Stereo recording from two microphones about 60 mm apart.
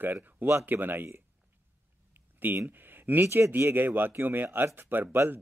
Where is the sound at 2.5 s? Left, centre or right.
Right.